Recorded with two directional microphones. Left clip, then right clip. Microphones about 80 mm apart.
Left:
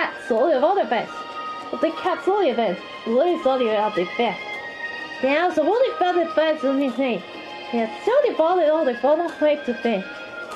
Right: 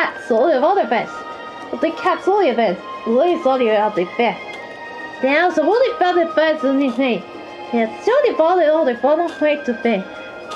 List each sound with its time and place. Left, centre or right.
0.0 s a woman's voice: centre; by 4.4 s left
5.2 s speech: centre